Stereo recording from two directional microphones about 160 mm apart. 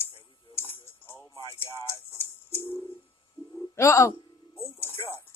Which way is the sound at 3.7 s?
15° left (ahead or behind).